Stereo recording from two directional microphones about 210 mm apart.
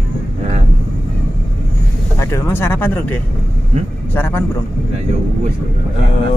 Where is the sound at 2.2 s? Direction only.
10° left (ahead or behind).